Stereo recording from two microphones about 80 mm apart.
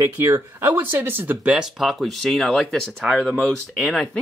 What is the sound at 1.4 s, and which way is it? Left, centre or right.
Speech, centre.